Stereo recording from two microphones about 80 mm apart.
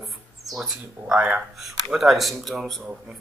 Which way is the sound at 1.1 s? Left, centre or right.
Centre.